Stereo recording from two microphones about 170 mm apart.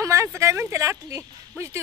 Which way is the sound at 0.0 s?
15° right (ahead or behind).